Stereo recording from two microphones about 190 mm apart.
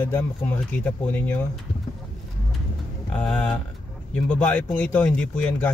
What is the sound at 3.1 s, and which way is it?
Speech, 5° left (ahead or behind).